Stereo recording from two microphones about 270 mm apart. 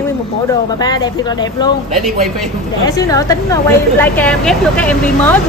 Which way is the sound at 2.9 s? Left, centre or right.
Centre.